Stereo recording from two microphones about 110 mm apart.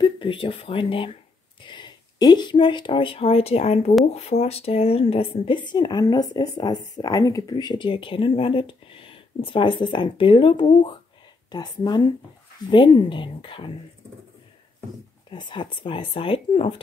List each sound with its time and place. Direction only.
0.0 s speech: 50° left (ahead or behind)
1.6 s speech: 45° left (ahead or behind)
15.3 s speech: 45° left (ahead or behind)